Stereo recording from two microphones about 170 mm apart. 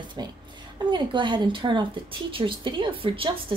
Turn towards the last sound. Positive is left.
turn(degrees=-30)  # may be behind; listen again after turning